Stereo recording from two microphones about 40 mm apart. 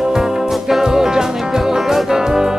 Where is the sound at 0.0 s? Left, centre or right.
Centre.